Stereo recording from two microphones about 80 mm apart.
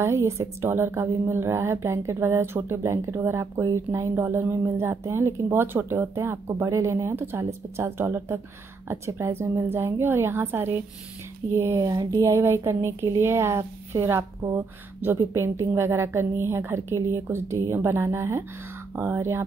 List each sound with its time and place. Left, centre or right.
0.0 s speech: right
11.5 s speech: right